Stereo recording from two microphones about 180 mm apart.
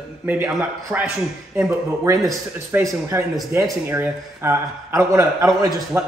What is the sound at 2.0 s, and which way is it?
Speech, 20° right (ahead or behind).